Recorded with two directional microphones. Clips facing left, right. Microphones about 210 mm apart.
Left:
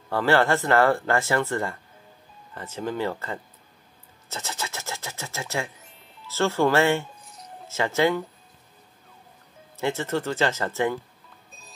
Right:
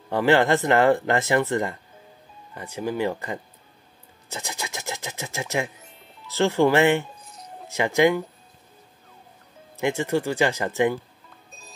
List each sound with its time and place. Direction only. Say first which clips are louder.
0.1 s speech: right 2 dB; 15° right (ahead or behind)
9.8 s speech: right 3 dB; 15° right (ahead or behind)